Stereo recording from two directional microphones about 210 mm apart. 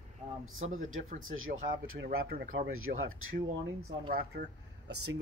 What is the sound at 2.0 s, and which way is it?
Speech, 45° right (ahead or behind).